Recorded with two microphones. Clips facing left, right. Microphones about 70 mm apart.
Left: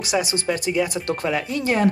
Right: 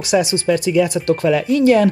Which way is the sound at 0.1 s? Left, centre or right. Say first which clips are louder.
Right 7 dB; left.